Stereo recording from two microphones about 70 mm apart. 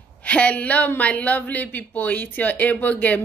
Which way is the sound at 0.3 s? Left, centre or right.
Centre.